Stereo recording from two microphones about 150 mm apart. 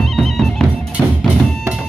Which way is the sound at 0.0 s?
Centre (ahead or behind).